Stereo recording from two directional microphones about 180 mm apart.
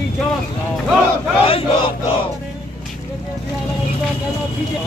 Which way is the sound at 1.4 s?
30° left (ahead or behind).